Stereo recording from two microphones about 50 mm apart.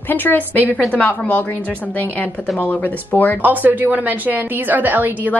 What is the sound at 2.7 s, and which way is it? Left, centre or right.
Speech, left.